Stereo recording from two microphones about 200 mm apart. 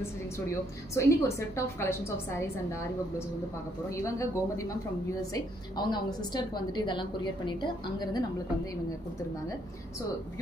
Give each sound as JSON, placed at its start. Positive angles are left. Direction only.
{"t": 0.0, "sound": "a woman's voice", "side_deg": 15}
{"t": 3.9, "sound": "a woman's voice", "side_deg": 15}